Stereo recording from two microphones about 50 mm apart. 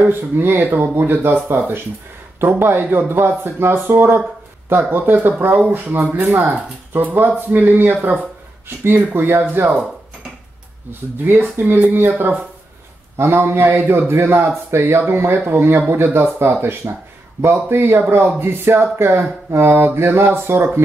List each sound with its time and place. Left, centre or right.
0.0 s speech: right
9.5 s speech: right
10.9 s speech: right
13.2 s speech: right
13.7 s speech: right
13.9 s speech: right
17.4 s speech: right